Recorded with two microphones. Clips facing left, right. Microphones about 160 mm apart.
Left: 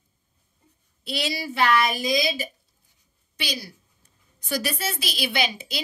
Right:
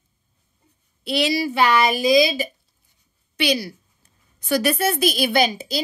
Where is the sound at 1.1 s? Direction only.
70° right (ahead or behind).